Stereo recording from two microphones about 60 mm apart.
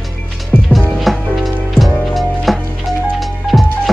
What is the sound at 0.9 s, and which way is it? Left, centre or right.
Music, centre.